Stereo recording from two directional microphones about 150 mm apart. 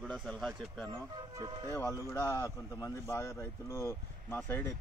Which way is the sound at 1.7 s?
20° left (ahead or behind).